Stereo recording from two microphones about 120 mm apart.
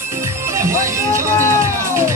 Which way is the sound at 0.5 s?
25° right (ahead or behind).